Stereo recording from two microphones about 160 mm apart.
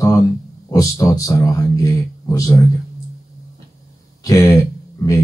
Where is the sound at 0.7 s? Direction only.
20° left (ahead or behind).